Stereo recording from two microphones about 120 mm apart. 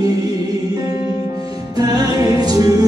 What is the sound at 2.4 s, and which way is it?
Music, 30° right (ahead or behind).